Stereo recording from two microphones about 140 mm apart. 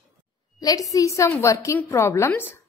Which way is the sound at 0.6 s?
25° left (ahead or behind).